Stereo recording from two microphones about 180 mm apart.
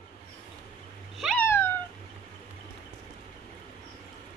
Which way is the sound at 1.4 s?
15° left (ahead or behind).